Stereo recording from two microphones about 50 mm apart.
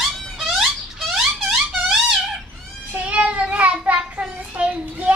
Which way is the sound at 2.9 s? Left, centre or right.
Right.